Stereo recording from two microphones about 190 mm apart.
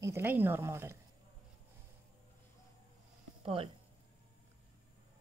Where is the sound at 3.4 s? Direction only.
25° right (ahead or behind).